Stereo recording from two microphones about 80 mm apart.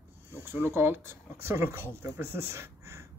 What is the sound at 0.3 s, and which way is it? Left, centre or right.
Speech, right.